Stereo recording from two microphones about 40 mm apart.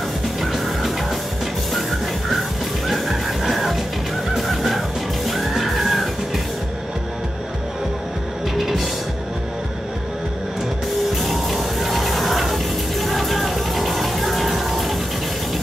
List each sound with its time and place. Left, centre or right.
0.4 s music: centre
8.5 s music: centre
11.1 s music: centre